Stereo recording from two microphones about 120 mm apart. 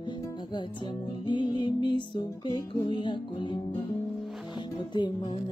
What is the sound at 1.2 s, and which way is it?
Music, 40° left (ahead or behind).